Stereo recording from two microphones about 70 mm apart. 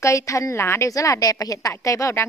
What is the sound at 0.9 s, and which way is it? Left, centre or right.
A woman's voice, left.